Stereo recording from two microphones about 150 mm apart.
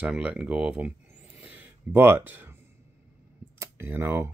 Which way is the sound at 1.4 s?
10° right (ahead or behind).